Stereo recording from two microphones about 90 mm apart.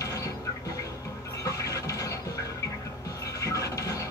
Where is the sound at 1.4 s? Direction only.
40° left (ahead or behind).